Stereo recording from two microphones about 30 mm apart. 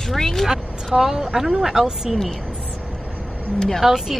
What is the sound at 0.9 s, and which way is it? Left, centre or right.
Speech, centre.